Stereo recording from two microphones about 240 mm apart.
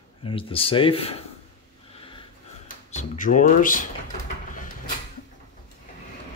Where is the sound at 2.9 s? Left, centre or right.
Left.